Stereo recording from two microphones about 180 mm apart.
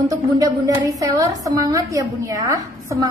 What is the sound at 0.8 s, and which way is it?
A woman's voice, 20° right (ahead or behind).